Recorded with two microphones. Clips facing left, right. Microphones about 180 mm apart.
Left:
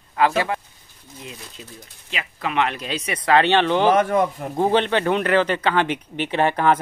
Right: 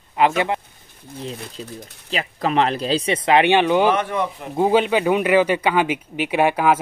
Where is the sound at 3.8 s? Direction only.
45° left (ahead or behind).